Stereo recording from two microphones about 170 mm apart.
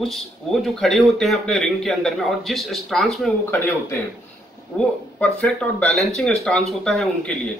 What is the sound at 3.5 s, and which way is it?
A man's voice, 15° left (ahead or behind).